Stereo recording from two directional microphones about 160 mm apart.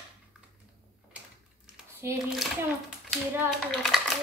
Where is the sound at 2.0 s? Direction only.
15° right (ahead or behind).